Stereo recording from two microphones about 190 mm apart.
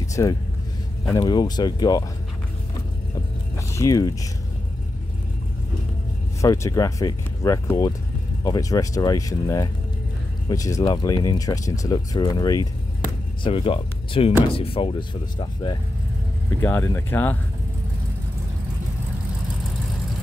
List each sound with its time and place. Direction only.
0.0 s vehicle: 15° left (ahead or behind)
1.0 s speech: 20° left (ahead or behind)
3.5 s speech: 15° left (ahead or behind)
6.4 s speech: 15° left (ahead or behind)
16.4 s speech: 15° left (ahead or behind)